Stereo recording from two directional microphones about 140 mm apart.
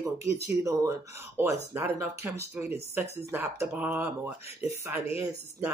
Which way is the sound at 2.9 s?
15° right (ahead or behind).